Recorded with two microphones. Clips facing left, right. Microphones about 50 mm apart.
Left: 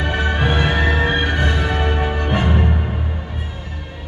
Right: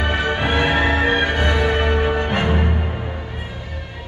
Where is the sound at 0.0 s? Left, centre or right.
Centre.